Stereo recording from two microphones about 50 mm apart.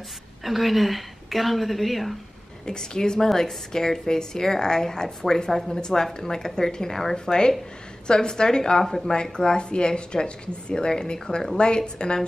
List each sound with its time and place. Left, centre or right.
0.4 s a woman's voice: centre
2.6 s a woman's voice: centre